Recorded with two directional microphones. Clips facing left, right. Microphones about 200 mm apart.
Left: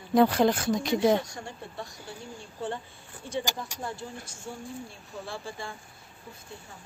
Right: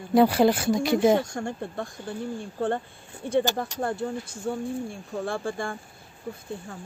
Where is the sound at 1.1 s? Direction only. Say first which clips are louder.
Right 4 dB; 50° right (ahead or behind).